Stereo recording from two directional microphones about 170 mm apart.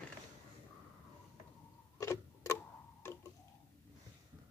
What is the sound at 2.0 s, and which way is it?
Clock, 15° left (ahead or behind).